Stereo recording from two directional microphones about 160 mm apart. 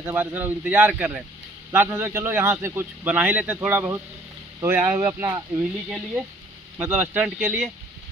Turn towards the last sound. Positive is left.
turn(degrees=-5)  # may be behind; listen again after turning